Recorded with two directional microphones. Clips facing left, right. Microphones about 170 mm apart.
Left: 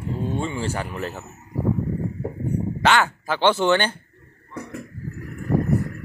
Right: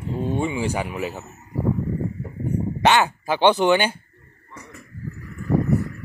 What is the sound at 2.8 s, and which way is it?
Speech, 20° right (ahead or behind).